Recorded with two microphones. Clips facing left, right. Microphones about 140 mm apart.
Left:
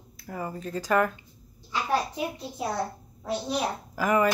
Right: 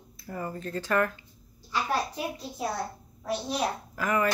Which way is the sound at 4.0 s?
15° left (ahead or behind).